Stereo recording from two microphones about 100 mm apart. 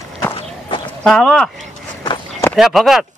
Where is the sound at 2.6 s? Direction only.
5° right (ahead or behind).